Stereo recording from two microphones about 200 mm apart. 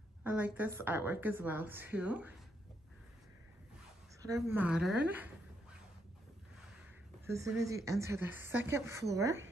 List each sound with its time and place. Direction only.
0.2 s a woman's voice: 5° right (ahead or behind)
4.2 s a woman's voice: 15° right (ahead or behind)
7.2 s a woman's voice: 15° right (ahead or behind)